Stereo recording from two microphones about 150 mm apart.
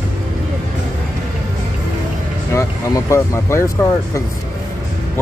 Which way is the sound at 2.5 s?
20° left (ahead or behind).